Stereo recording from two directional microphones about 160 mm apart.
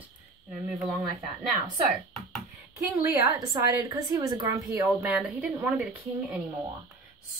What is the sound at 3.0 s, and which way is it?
A woman's voice, 20° right (ahead or behind).